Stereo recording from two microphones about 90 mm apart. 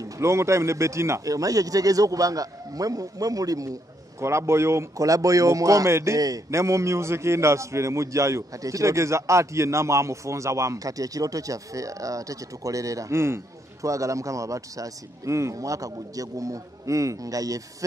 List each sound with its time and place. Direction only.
0.0 s a man's voice: 30° right (ahead or behind)